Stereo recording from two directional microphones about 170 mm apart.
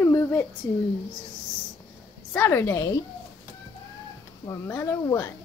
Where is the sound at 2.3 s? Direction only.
15° left (ahead or behind).